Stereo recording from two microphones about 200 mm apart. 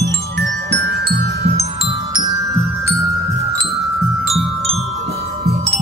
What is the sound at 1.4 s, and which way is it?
Glockenspiel, 30° right (ahead or behind).